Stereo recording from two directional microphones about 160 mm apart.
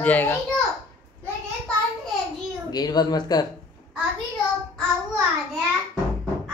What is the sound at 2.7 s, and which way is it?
Speech, 25° left (ahead or behind).